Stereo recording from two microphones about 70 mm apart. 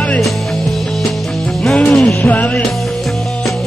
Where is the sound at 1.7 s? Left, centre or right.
Centre.